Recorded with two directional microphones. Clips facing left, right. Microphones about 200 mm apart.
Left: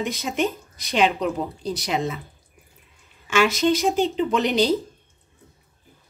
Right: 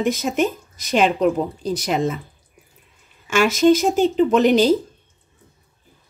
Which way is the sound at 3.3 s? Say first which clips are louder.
Right 5 dB; 45° right (ahead or behind).